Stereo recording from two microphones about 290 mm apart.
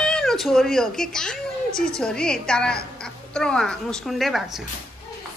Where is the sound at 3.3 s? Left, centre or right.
Centre.